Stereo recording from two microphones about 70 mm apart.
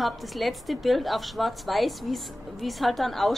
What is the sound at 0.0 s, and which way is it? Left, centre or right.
A woman's voice, centre.